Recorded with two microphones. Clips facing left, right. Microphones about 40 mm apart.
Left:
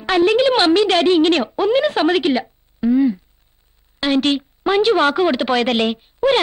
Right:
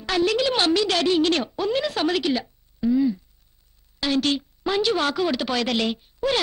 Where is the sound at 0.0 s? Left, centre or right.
Left.